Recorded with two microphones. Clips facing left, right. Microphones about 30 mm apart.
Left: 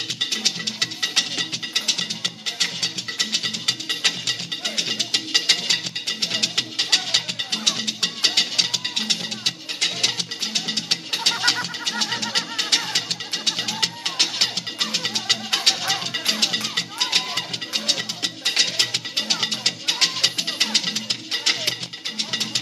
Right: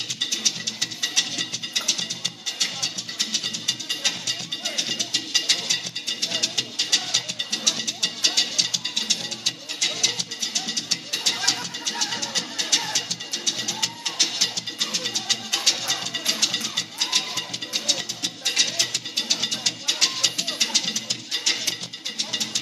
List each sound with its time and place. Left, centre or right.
0.3 s music: left